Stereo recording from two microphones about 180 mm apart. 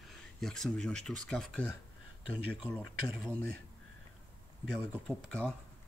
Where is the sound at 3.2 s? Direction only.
5° left (ahead or behind).